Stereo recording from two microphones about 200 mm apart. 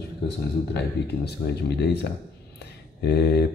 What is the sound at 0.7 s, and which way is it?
Speech, 55° left (ahead or behind).